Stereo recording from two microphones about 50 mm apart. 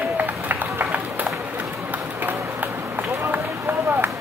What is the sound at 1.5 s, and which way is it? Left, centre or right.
Run, right.